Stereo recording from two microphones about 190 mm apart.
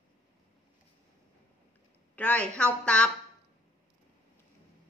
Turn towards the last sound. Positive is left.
turn(degrees=5)  # may be behind; listen again after turning